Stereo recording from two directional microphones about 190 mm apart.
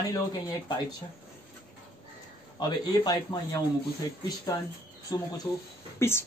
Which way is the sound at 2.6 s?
20° left (ahead or behind).